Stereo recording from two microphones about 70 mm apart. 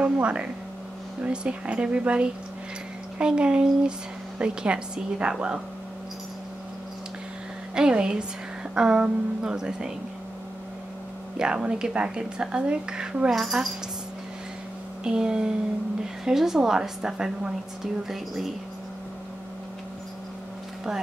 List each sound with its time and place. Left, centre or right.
0.0 s a woman's voice: centre
7.7 s a woman's voice: centre
11.3 s a woman's voice: centre
15.0 s a woman's voice: centre